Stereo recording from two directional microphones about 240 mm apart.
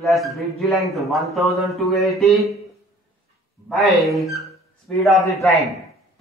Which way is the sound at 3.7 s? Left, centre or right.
Centre.